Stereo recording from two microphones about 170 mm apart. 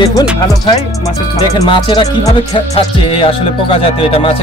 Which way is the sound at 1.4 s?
25° left (ahead or behind).